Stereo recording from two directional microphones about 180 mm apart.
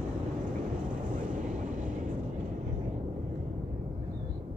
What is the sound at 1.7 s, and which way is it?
Vehicle, 45° right (ahead or behind).